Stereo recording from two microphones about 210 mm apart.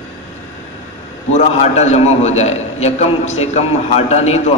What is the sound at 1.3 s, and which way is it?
A man's voice, 30° left (ahead or behind).